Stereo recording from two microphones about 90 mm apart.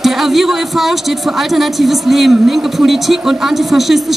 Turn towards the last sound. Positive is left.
turn(degrees=0)  # may be behind; listen again after turning